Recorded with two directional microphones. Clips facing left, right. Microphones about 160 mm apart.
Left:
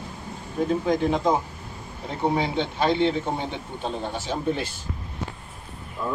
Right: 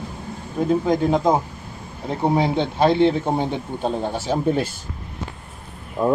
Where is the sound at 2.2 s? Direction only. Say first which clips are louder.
Right 4 dB; 40° right (ahead or behind).